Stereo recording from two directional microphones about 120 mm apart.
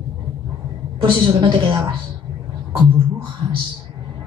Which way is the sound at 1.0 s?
45° right (ahead or behind).